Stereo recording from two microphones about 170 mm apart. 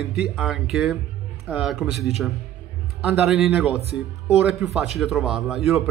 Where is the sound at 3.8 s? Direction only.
35° right (ahead or behind).